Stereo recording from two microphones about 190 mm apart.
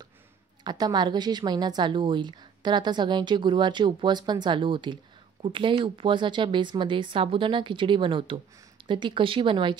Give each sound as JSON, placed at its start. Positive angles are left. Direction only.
{"t": 0.7, "sound": "a woman's voice", "side_deg": -20}